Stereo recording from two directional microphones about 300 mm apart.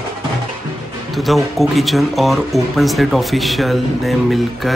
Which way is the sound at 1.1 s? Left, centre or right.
Centre.